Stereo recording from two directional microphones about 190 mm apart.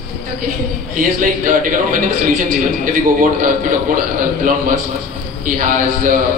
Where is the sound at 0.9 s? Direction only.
45° right (ahead or behind).